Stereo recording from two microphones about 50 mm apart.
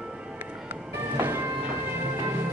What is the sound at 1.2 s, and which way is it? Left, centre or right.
Music, right.